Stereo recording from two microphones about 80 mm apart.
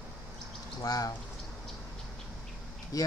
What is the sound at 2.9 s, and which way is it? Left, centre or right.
Speech, left.